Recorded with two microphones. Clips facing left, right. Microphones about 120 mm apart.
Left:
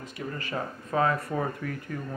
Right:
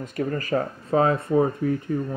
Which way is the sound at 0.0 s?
50° right (ahead or behind).